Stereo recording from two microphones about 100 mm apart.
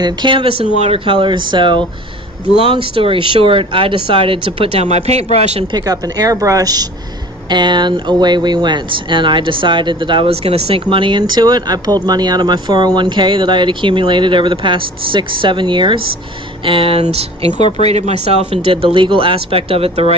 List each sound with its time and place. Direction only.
0.0 s speech: 50° right (ahead or behind)
2.8 s speech: 60° right (ahead or behind); by 5.7 s 90° right
5.7 s speech: 40° right (ahead or behind)
16.6 s speech: 65° right (ahead or behind); by 17.5 s 85° right
17.5 s speech: 55° left (ahead or behind)
17.8 s speech: 90° right; by 20.2 s 75° right (ahead or behind)